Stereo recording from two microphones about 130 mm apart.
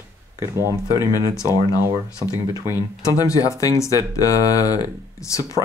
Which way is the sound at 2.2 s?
35° right (ahead or behind).